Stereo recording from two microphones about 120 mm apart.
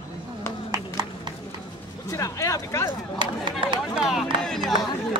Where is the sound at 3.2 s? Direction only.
45° right (ahead or behind).